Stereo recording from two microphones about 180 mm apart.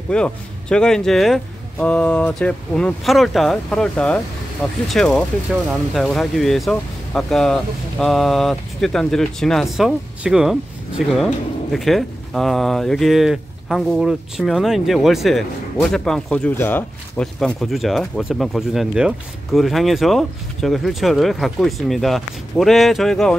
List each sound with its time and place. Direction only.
0.1 s speech: 5° left (ahead or behind)